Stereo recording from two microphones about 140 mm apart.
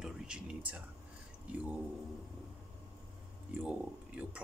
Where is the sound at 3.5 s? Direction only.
10° right (ahead or behind).